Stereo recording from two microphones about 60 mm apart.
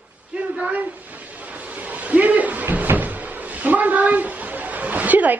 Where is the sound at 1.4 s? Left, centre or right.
Right.